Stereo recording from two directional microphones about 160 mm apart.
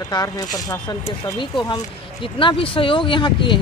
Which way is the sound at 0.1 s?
25° left (ahead or behind).